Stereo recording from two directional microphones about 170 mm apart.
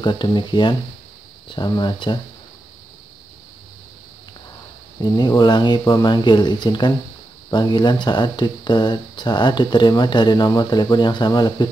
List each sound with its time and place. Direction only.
0.0 s speech: 25° left (ahead or behind)
5.0 s speech: 25° left (ahead or behind)